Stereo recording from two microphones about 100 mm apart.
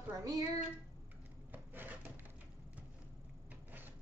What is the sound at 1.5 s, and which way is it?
Dishes, 20° right (ahead or behind).